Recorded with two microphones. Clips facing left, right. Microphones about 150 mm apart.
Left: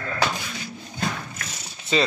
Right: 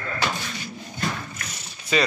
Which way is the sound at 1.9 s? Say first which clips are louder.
Even; 25° left (ahead or behind).